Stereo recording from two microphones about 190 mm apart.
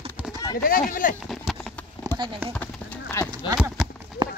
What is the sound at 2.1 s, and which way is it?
Clip-clop, 10° left (ahead or behind).